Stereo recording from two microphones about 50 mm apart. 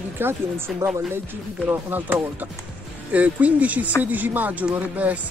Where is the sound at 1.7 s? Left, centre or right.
Right.